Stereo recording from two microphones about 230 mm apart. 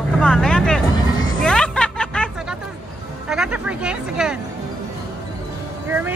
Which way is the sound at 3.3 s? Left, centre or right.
Centre.